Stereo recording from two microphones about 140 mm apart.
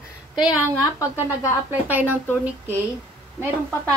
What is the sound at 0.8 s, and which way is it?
Speech, 25° left (ahead or behind).